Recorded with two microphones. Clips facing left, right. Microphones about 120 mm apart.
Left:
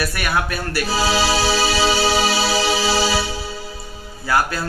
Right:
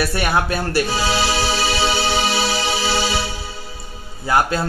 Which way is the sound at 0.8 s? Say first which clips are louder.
Left 1 dB; 35° left (ahead or behind).